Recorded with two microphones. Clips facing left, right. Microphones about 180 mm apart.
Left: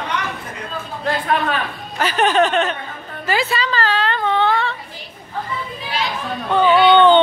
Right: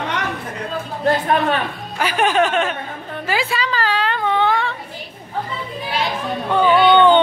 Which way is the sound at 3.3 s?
10° right (ahead or behind).